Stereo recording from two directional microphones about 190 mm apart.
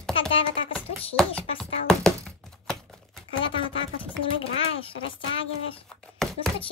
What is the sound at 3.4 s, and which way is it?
Speech, 25° left (ahead or behind).